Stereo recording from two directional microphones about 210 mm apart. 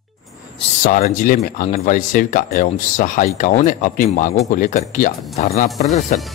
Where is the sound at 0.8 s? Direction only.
40° left (ahead or behind).